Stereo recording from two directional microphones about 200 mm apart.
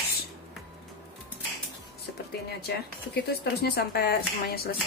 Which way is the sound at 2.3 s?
55° left (ahead or behind).